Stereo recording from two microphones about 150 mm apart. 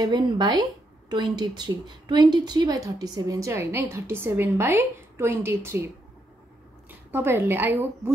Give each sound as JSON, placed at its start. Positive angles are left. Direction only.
{"t": 0.0, "sound": "a woman's voice", "side_deg": -30}
{"t": 7.1, "sound": "a woman's voice", "side_deg": -15}